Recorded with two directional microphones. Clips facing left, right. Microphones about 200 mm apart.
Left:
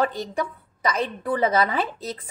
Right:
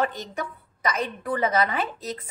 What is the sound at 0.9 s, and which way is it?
A woman's voice, 30° left (ahead or behind).